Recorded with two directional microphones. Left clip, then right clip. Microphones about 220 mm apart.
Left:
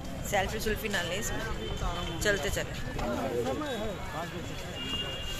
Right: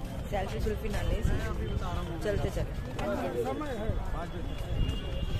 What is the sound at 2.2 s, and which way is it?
Speech, 5° left (ahead or behind).